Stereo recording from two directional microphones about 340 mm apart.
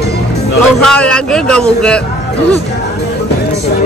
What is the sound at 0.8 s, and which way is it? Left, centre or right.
Speech, centre.